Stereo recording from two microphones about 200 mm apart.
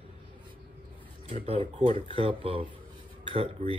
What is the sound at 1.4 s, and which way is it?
Speech, 30° right (ahead or behind).